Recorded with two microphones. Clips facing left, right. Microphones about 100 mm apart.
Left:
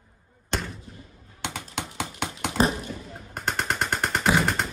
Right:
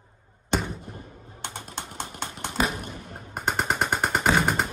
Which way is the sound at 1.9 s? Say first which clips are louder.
Left 3 dB; 65° left (ahead or behind).